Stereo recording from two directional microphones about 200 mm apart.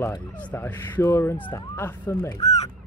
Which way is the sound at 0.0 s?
10° left (ahead or behind).